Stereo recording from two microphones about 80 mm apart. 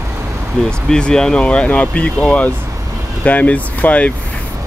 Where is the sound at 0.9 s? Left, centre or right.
Centre.